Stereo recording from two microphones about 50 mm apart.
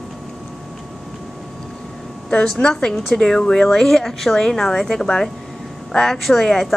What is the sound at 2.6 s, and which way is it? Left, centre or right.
Speech, left.